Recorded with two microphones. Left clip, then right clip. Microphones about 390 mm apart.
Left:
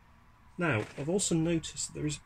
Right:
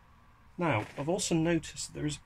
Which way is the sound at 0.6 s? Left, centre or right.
Centre.